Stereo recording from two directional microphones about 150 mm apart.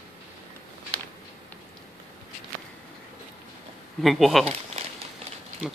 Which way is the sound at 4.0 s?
Centre (ahead or behind).